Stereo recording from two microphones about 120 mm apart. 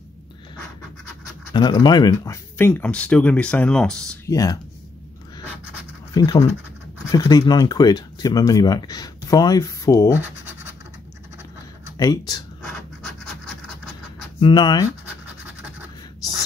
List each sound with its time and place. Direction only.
1.5 s speech: 35° left (ahead or behind); by 4.0 s 5° left (ahead or behind)
4.3 s speech: 30° left (ahead or behind)
6.1 s speech: 30° left (ahead or behind)
12.0 s speech: 30° left (ahead or behind)
14.4 s speech: 40° left (ahead or behind)
15.0 s scratch: 15° right (ahead or behind)